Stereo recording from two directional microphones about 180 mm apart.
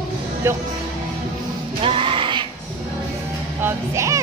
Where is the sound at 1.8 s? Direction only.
30° right (ahead or behind).